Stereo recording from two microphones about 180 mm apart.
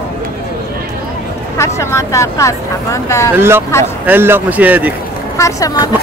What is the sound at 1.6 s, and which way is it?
Speech, 15° left (ahead or behind).